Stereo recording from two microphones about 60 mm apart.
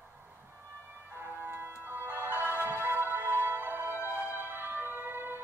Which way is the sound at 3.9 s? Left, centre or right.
Left.